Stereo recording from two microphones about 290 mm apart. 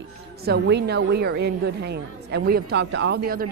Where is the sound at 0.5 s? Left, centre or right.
Right.